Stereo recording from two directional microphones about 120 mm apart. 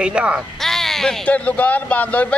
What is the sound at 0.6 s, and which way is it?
A man's voice, centre (ahead or behind).